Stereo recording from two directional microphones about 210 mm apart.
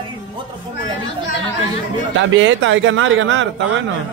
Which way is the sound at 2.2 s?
65° right (ahead or behind).